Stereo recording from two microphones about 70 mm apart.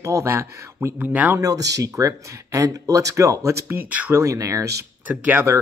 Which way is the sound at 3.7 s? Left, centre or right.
Right.